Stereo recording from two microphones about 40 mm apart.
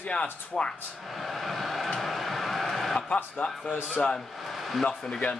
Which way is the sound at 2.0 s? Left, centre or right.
Centre.